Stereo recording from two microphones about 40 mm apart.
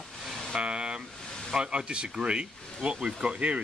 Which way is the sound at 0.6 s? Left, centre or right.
Right.